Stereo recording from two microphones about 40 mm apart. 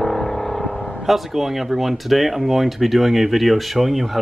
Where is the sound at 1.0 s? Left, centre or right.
Centre.